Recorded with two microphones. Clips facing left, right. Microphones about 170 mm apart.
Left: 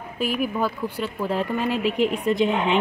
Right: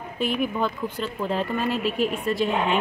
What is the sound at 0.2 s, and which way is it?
Speech, 5° left (ahead or behind).